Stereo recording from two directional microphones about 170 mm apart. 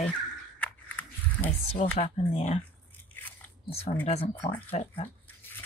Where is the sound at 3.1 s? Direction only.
10° left (ahead or behind).